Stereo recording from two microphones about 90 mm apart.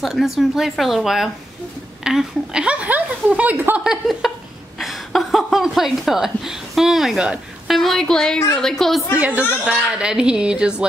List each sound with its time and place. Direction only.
0.0 s a woman's voice: 5° right (ahead or behind); by 3.8 s 20° right (ahead or behind)
3.8 s a woman's voice: 5° right (ahead or behind)
9.1 s speech: 15° right (ahead or behind)